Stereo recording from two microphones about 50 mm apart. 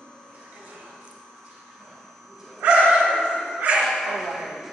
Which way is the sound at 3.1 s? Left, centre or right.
Centre.